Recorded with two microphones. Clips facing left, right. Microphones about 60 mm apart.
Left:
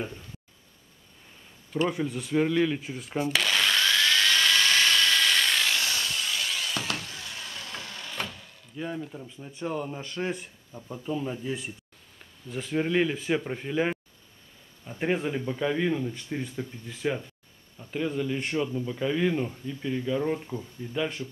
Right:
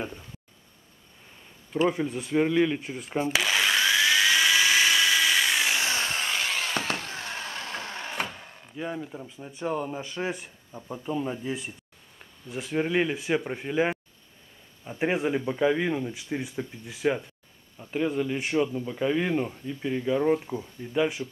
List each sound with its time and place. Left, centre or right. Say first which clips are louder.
1.7 s speech: right 2 dB; centre
3.3 s drill: right 1 dB; centre; by 8.2 s right
8.2 s wood: right 1 dB; right
8.7 s speech: right 1 dB; centre